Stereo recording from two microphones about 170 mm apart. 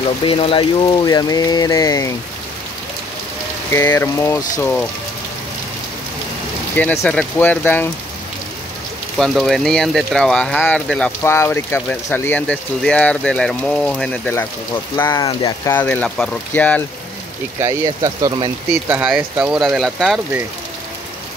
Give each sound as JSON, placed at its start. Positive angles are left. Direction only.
{"t": 0.2, "sound": "a sound", "side_deg": 30}
{"t": 3.7, "sound": "speech", "side_deg": 10}
{"t": 6.7, "sound": "speech", "side_deg": 10}
{"t": 9.2, "sound": "speech", "side_deg": 0}
{"t": 17.6, "sound": "speech", "side_deg": -15}
{"t": 18.7, "sound": "speech", "side_deg": -10}